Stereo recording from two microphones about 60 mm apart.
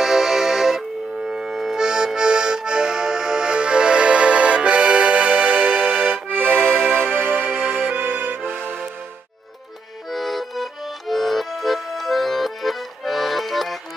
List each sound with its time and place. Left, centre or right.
0.0 s music: centre; by 8.8 s right
10.1 s accordion: centre